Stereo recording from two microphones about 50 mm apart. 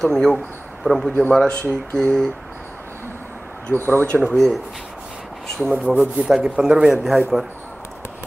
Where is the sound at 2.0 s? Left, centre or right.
Centre.